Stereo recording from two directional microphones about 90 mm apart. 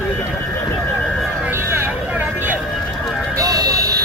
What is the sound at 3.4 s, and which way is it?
Buzzer, 40° right (ahead or behind).